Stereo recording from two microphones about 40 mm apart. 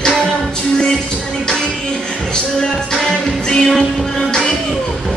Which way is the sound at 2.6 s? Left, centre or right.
Centre.